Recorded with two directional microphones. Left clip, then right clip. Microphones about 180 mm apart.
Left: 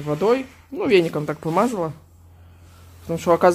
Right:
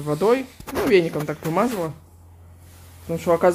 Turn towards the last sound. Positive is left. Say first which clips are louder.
# left 2 dB
turn(degrees=15)  # may be behind; listen again after turning